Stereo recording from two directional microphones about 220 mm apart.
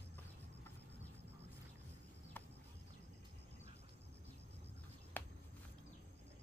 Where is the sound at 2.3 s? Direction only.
10° left (ahead or behind).